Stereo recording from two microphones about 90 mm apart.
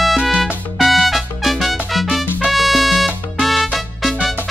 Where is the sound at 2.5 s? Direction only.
Centre (ahead or behind).